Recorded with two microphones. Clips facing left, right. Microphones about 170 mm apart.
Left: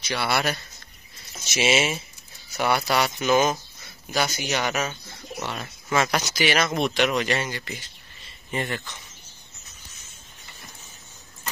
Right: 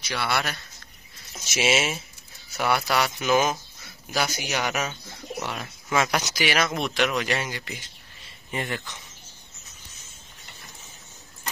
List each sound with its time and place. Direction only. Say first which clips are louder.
0.1 s speech: left 3 dB; 5° left (ahead or behind)